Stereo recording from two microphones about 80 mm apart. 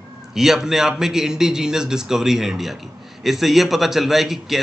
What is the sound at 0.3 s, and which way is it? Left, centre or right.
A man's voice, centre.